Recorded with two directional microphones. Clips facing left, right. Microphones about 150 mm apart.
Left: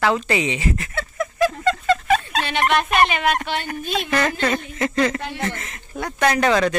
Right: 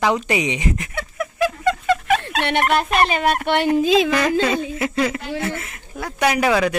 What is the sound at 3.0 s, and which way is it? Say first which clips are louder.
Speech: right 2 dB; 35° right (ahead or behind).